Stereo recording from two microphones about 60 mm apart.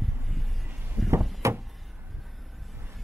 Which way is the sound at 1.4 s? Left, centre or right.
Right.